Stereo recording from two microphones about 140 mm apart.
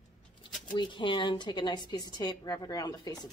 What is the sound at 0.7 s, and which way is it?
A woman's voice, 35° left (ahead or behind).